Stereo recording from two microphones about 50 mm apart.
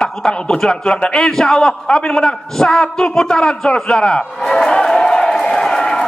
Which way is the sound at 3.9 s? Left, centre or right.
Centre.